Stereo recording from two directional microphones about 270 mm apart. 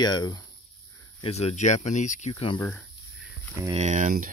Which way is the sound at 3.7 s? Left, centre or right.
Right.